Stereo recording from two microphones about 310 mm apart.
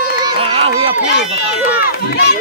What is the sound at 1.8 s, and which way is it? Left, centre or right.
Run, left.